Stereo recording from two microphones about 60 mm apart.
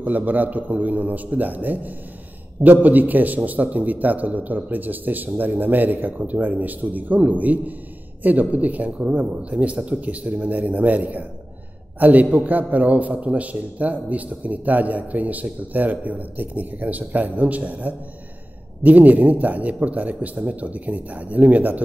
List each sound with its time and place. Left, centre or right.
0.0 s a man's voice: right